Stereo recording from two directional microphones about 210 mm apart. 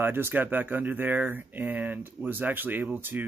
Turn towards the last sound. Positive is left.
turn(degrees=-10)  # may be behind; listen again after turning